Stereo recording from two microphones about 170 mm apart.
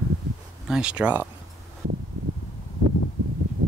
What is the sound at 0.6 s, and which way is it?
Speech, 5° right (ahead or behind).